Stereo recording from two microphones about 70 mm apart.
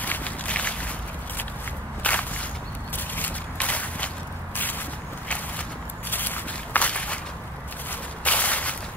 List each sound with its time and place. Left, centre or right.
0.0 s walk: left
2.0 s walk: left
3.2 s a sound: left
6.0 s walk: left
7.9 s whip: left